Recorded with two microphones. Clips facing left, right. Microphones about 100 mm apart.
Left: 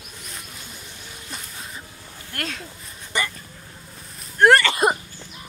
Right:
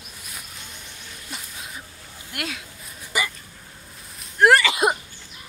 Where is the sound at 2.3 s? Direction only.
5° right (ahead or behind).